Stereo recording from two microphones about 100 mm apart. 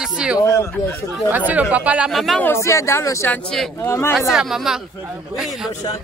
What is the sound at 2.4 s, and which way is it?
Speech, 25° left (ahead or behind).